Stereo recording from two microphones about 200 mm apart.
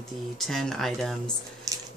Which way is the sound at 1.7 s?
15° right (ahead or behind).